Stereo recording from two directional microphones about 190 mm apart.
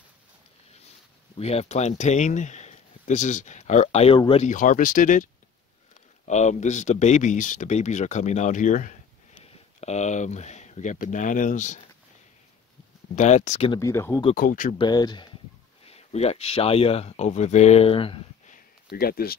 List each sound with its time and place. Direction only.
1.4 s speech: 35° left (ahead or behind)
13.1 s speech: 40° left (ahead or behind)
13.7 s speech: 15° left (ahead or behind)
14.3 s speech: 45° left (ahead or behind)
14.8 s speech: 20° left (ahead or behind)
18.9 s speech: 50° left (ahead or behind)